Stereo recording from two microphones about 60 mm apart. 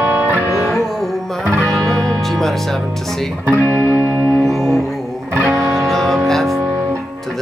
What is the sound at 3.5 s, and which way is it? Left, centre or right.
Music, left.